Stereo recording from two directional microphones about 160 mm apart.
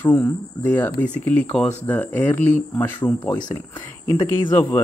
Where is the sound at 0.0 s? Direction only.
15° left (ahead or behind).